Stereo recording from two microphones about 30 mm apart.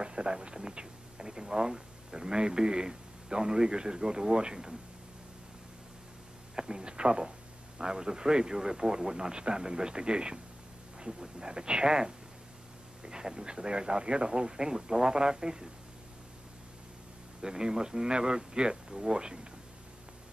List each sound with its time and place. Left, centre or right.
0.0 s speech: right
0.7 s a sound: right
1.2 s speech: centre
6.5 s a sound: right
6.8 s speech: right
17.4 s speech: right